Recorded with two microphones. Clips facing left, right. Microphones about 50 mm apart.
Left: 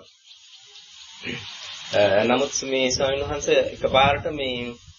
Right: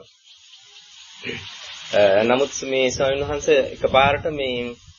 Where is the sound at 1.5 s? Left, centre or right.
Right.